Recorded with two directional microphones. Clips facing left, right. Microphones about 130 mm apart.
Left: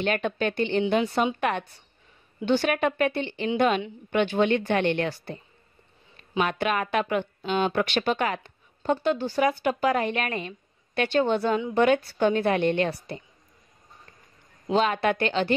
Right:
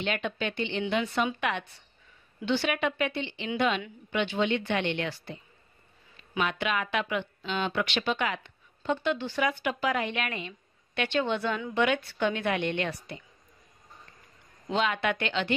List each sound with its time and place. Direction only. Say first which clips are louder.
0.0 s speech: left 5 dB; 45° left (ahead or behind)
6.4 s a woman's voice: left 4 dB; 45° left (ahead or behind)
14.7 s a woman's voice: left 5 dB; 40° left (ahead or behind)